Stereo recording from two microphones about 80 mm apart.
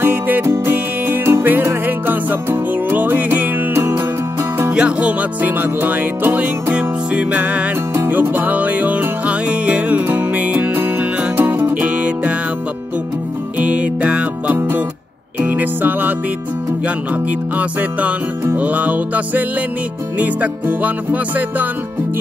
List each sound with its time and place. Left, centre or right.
0.0 s music: right
13.6 s music: centre